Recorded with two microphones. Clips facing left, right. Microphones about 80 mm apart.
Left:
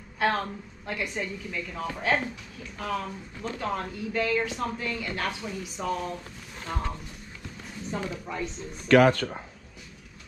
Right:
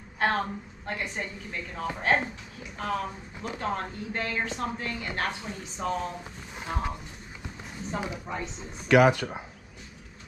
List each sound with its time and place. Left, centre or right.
0.2 s a woman's voice: centre
5.8 s speech: centre